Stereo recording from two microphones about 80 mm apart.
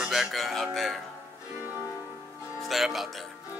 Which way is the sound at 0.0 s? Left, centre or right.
Centre.